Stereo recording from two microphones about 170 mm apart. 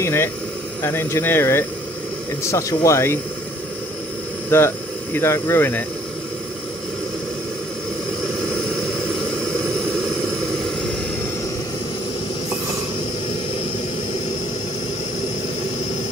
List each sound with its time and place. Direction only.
0.0 s speech: 15° left (ahead or behind)
4.5 s speech: 15° left (ahead or behind)